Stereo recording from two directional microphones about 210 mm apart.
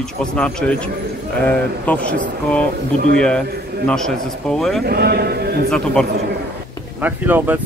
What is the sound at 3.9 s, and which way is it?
Speech, 5° left (ahead or behind).